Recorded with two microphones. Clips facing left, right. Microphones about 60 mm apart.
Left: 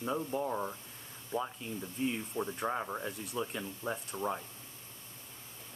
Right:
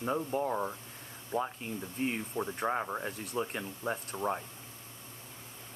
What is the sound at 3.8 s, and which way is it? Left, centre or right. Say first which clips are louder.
Speech: right 3 dB; right.